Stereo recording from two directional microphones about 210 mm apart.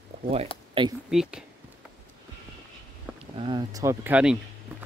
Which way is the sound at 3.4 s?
20° right (ahead or behind).